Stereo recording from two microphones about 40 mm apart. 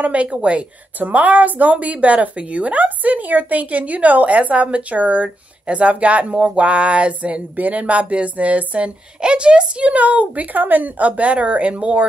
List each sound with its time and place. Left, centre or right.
0.0 s a woman's voice: right
0.9 s a woman's voice: right
9.2 s a woman's voice: right